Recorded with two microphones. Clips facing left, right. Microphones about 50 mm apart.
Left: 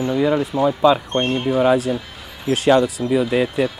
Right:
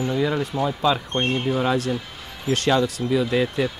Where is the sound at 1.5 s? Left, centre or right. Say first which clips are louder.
Left 9 dB; centre.